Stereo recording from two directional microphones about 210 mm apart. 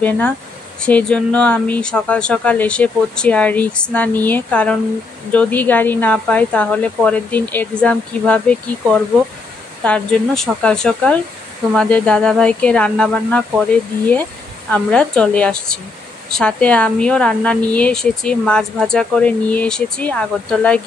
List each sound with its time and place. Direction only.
0.7 s a woman's voice: 5° left (ahead or behind)